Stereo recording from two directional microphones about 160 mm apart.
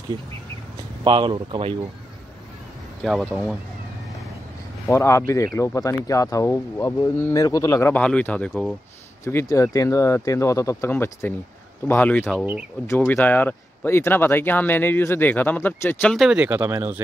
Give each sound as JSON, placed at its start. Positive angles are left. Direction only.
{"t": 1.0, "sound": "speech", "side_deg": -30}
{"t": 3.0, "sound": "speech", "side_deg": 0}
{"t": 4.8, "sound": "speech", "side_deg": 15}
{"t": 9.2, "sound": "speech", "side_deg": 15}